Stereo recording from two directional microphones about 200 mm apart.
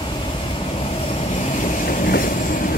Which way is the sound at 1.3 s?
40° left (ahead or behind).